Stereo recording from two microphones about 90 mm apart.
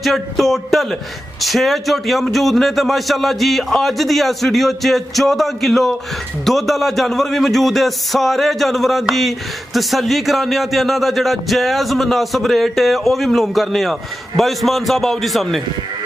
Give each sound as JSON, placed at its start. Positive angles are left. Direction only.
{"t": 0.0, "sound": "a man's voice", "side_deg": 0}